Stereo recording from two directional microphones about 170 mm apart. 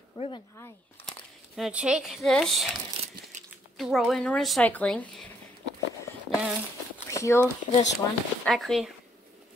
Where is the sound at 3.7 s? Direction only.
Centre (ahead or behind).